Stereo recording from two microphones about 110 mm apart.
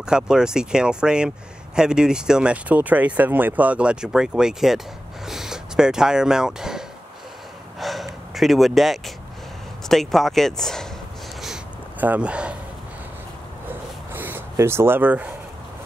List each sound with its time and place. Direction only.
0.0 s speech: 5° right (ahead or behind)
7.8 s gasp: centre (ahead or behind)
9.8 s speech: centre (ahead or behind)
12.0 s speech: 15° right (ahead or behind)
14.1 s speech: 20° right (ahead or behind)